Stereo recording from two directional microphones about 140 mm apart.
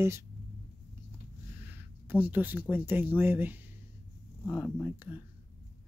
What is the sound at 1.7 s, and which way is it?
Speech, 15° right (ahead or behind).